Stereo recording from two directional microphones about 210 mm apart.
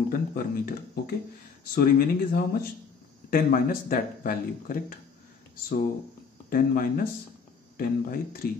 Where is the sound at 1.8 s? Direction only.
45° left (ahead or behind).